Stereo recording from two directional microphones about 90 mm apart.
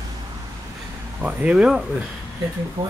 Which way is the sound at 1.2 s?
15° right (ahead or behind).